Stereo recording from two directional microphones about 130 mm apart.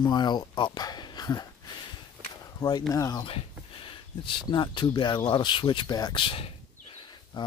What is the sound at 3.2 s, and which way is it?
Speech, 40° left (ahead or behind).